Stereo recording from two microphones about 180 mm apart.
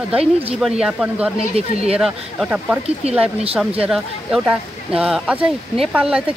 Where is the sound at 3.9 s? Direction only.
Centre (ahead or behind).